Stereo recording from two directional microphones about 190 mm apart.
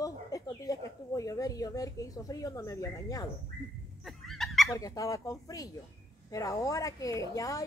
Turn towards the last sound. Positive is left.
turn(degrees=15)  # may be behind; listen again after turning